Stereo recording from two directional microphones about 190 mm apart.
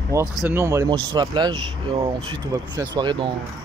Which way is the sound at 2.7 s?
20° right (ahead or behind).